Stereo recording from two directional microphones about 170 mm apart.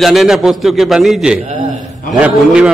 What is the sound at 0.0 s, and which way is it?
A man's voice, centre (ahead or behind).